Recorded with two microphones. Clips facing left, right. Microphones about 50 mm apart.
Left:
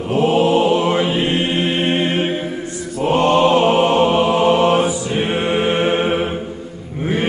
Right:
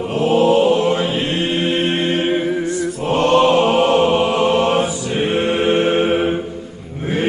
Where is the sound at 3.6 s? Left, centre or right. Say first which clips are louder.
Even; left.